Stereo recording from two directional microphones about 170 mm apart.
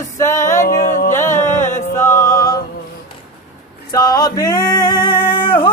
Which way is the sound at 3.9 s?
20° left (ahead or behind).